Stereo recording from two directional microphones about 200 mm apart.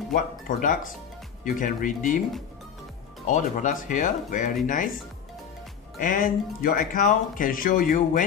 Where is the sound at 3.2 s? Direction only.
40° left (ahead or behind).